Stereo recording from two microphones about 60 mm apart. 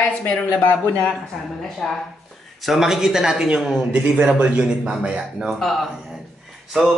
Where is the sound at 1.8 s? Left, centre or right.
Centre.